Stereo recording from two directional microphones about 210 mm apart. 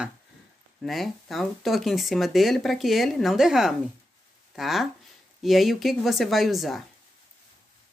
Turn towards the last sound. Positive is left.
turn(degrees=0)  # may be behind; listen again after turning